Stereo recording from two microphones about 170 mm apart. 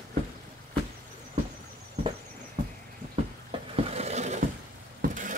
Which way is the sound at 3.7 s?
35° right (ahead or behind).